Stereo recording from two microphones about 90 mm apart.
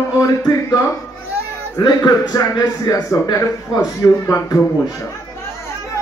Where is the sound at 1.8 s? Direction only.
50° left (ahead or behind).